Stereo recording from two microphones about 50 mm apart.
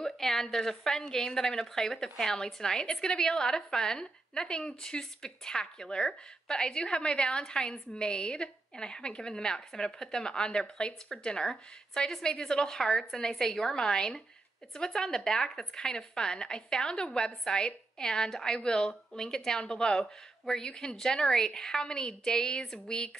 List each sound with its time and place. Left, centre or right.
0.0 s speech: centre